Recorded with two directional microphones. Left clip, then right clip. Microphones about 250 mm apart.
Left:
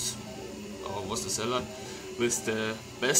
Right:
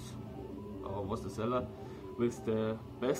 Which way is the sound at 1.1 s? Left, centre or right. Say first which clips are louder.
Left 4 dB; centre.